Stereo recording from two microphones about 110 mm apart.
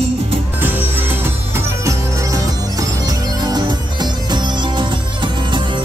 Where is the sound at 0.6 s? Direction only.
20° right (ahead or behind).